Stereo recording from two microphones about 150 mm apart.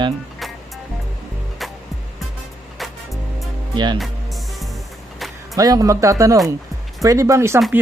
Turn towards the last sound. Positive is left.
turn(degrees=-20)  # may be behind; listen again after turning